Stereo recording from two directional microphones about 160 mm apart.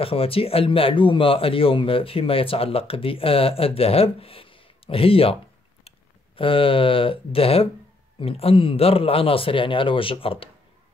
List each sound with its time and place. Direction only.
0.0 s speech: 35° left (ahead or behind)